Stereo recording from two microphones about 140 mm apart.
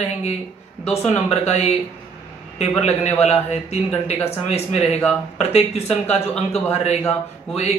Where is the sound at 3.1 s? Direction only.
50° left (ahead or behind).